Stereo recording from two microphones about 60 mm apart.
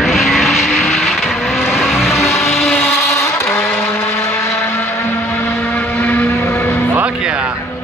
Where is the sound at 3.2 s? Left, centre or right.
Left.